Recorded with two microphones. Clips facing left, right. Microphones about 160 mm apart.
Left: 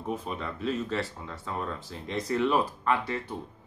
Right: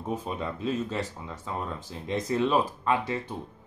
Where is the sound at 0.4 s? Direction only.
15° right (ahead or behind).